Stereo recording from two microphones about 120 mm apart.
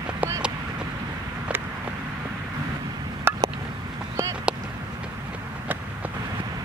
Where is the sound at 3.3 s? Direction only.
20° right (ahead or behind).